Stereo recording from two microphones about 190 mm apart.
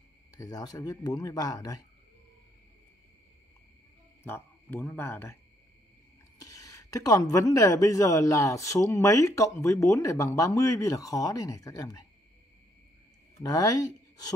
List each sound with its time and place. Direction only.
0.4 s speech: 20° left (ahead or behind)
4.2 s speech: 10° left (ahead or behind)
13.4 s speech: 20° left (ahead or behind)